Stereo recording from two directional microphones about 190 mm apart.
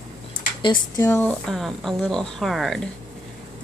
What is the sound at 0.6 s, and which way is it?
Speech, 25° left (ahead or behind).